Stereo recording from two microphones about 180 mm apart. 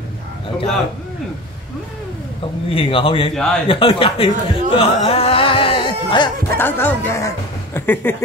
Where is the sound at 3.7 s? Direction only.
30° left (ahead or behind).